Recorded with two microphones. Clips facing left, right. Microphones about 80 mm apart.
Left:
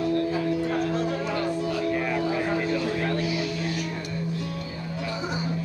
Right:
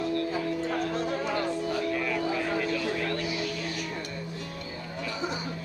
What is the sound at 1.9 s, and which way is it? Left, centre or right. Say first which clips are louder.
Music: left 3 dB; left.